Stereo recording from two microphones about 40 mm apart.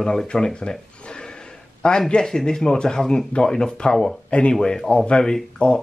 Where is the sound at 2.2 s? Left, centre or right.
Centre.